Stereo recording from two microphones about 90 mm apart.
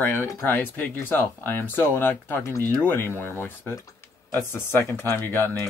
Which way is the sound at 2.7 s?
20° left (ahead or behind).